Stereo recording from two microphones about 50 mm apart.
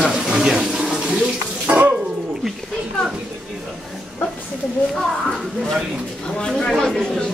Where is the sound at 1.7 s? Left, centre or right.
Right.